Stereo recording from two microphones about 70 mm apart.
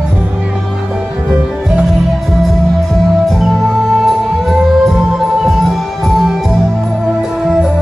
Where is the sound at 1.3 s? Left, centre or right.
Centre.